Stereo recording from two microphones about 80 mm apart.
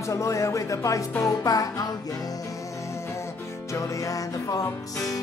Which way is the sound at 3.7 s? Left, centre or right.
Left.